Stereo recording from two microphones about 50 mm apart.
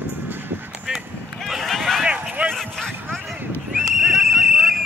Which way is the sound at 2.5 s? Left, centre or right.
Centre.